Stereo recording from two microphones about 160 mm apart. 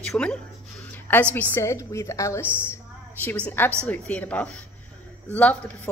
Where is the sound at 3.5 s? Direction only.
10° left (ahead or behind).